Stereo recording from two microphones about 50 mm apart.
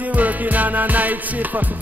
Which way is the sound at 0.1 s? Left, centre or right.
Right.